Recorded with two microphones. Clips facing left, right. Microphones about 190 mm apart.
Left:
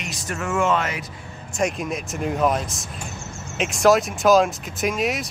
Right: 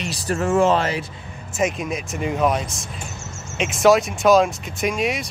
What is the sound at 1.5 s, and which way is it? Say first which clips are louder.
Speech: right 1 dB; centre (ahead or behind).